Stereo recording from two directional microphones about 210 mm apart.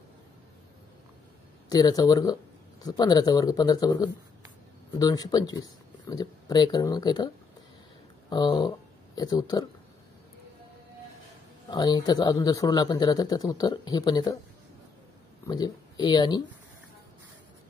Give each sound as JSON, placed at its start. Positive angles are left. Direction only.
{"t": 1.7, "sound": "a man's voice", "side_deg": 20}
{"t": 8.3, "sound": "speech", "side_deg": 20}
{"t": 11.7, "sound": "a man's voice", "side_deg": 20}
{"t": 15.4, "sound": "speech", "side_deg": 20}